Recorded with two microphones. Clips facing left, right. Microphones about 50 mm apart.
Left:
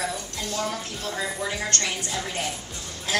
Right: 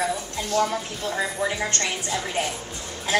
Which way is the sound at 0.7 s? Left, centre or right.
Centre.